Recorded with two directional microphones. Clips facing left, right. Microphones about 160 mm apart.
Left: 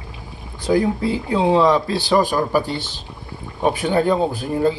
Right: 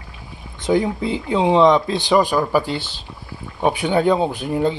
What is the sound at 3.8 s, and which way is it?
Speech, 15° right (ahead or behind).